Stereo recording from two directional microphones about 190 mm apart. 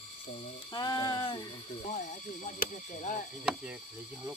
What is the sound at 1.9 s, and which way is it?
Speech, 40° left (ahead or behind).